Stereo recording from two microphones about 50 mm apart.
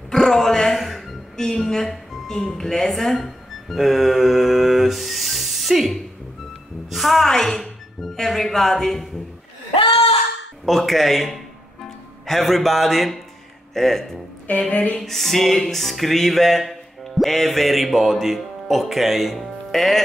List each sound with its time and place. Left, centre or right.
0.1 s a sound: centre
0.7 s music: centre
1.3 s a woman's voice: centre
6.9 s music: centre
7.2 s speech: centre
10.6 s music: centre
13.7 s speech: centre
14.7 s music: left
15.0 s music: centre